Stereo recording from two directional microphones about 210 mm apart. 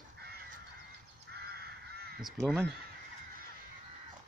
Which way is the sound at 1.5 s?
50° right (ahead or behind).